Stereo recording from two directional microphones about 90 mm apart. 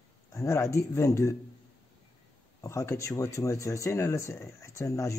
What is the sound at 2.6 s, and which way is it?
Speech, 35° left (ahead or behind).